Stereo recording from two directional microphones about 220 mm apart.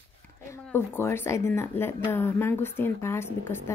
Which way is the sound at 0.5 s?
10° left (ahead or behind).